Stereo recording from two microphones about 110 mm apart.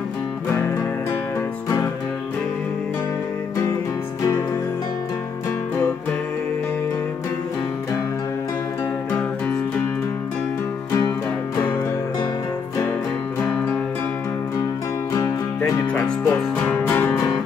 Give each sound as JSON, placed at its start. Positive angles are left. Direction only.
{"t": 10.9, "sound": "music", "side_deg": 30}
{"t": 15.9, "sound": "music", "side_deg": 15}